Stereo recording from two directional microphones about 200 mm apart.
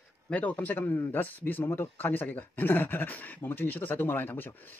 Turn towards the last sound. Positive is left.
turn(degrees=10)  # may be behind; listen again after turning